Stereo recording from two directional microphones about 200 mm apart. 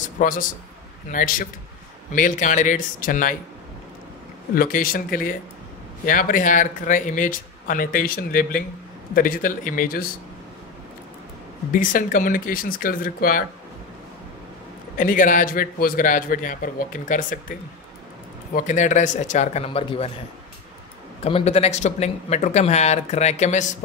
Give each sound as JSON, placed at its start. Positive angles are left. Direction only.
{"t": 0.2, "sound": "a man's voice", "side_deg": 45}
{"t": 4.6, "sound": "a man's voice", "side_deg": 45}
{"t": 11.7, "sound": "a man's voice", "side_deg": 40}
{"t": 15.0, "sound": "a man's voice", "side_deg": 40}
{"t": 21.2, "sound": "speech", "side_deg": 30}